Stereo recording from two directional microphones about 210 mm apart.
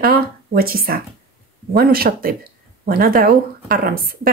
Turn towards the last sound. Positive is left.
turn(degrees=-45)  # may be behind; listen again after turning